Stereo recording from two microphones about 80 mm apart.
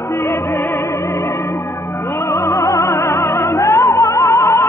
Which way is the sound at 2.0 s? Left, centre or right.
Left.